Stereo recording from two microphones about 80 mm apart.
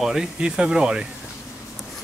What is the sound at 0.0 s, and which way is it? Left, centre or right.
Speech, centre.